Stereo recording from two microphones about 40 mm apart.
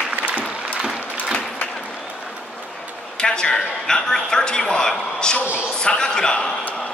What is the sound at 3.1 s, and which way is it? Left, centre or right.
Speech, left.